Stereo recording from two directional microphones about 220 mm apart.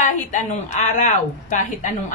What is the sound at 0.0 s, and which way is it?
A woman's voice, 35° left (ahead or behind).